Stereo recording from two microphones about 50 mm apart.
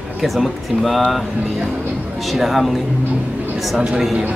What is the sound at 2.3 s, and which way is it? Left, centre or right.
Speech, centre.